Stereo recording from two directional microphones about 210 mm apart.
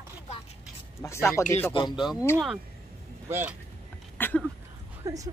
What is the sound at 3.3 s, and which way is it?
Speech, 10° right (ahead or behind).